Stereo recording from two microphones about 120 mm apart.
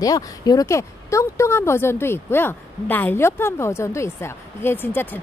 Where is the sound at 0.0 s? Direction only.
30° left (ahead or behind).